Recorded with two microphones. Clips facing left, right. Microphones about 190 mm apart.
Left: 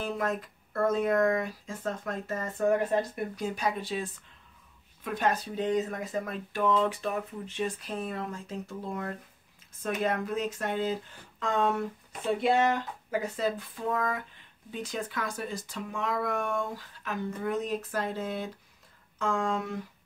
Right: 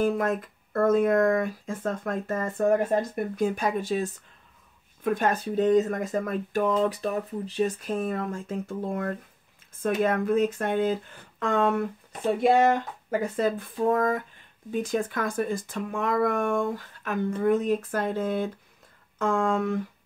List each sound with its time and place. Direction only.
0.7 s speech: 50° right (ahead or behind)